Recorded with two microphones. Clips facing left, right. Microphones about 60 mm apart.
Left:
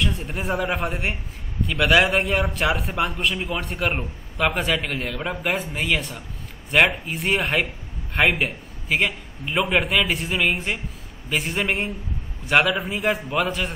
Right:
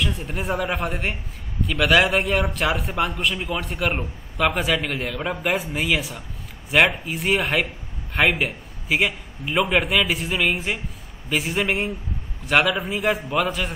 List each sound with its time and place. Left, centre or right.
0.0 s a man's voice: centre